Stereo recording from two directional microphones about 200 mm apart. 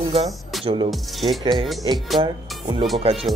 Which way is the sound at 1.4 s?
20° right (ahead or behind).